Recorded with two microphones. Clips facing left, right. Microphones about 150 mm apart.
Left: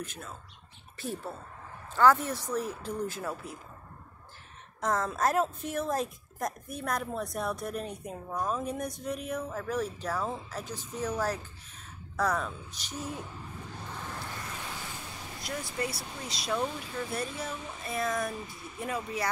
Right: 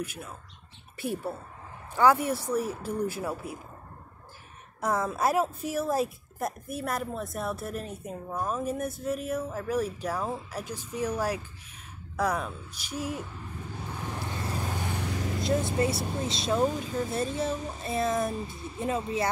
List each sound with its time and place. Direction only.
0.0 s a woman's voice: 10° right (ahead or behind)
4.8 s a woman's voice: 10° right (ahead or behind)
13.9 s vehicle: 15° right (ahead or behind)
14.4 s vehicle: 35° right (ahead or behind)
14.7 s vehicle: 65° right (ahead or behind)
15.4 s speech: 25° right (ahead or behind)
16.5 s speech: 40° right (ahead or behind)
17.1 s speech: 25° right (ahead or behind)